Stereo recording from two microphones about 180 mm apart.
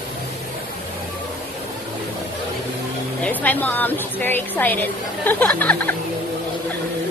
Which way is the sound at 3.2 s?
10° left (ahead or behind).